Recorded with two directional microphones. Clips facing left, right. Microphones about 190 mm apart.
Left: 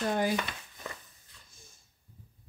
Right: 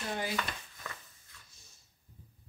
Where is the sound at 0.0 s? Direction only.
50° left (ahead or behind).